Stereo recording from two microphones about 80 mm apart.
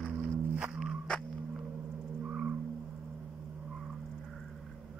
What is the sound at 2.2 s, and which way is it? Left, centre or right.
Vehicle, centre.